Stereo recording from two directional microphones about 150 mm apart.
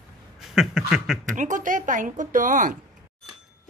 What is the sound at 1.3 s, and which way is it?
A woman's voice, 60° right (ahead or behind).